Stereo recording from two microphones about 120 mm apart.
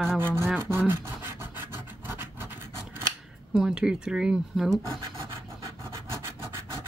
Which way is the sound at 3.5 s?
5° right (ahead or behind).